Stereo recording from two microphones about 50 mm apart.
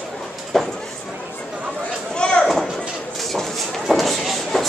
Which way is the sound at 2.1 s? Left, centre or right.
Centre.